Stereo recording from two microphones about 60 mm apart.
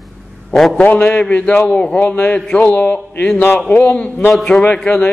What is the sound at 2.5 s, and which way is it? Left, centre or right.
Speech, left.